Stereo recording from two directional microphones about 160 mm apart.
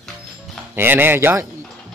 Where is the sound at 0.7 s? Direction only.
15° right (ahead or behind).